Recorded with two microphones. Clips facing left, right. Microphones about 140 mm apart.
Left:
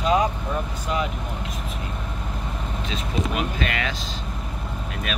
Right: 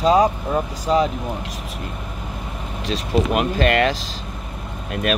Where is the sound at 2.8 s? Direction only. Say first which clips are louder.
Right 8 dB; 70° right (ahead or behind).